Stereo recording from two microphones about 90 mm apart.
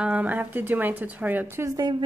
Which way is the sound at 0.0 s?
15° right (ahead or behind).